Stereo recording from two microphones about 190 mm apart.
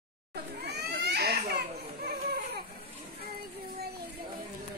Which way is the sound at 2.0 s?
55° right (ahead or behind).